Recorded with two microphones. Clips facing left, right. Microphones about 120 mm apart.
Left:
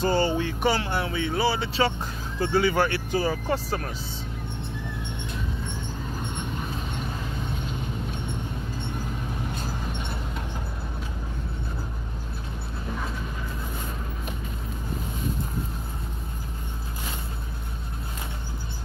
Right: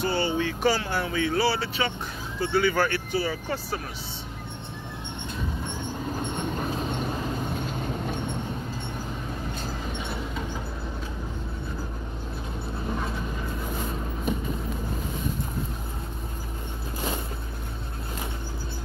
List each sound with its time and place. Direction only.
0.0 s speech: 40° left (ahead or behind)
0.6 s speech: 20° left (ahead or behind)
2.4 s speech: 30° left (ahead or behind)
3.1 s speech: 40° left (ahead or behind)
9.9 s music: centre (ahead or behind)